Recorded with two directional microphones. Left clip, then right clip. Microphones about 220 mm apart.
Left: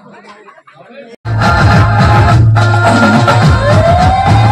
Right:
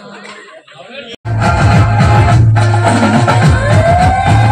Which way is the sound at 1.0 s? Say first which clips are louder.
Left 3 dB; 25° left (ahead or behind).